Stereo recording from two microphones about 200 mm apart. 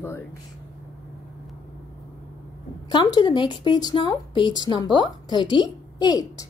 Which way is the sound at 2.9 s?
20° left (ahead or behind).